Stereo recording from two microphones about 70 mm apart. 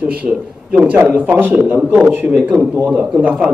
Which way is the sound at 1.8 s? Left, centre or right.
Centre.